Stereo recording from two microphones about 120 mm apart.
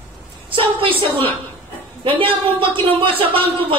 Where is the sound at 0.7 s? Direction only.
50° right (ahead or behind).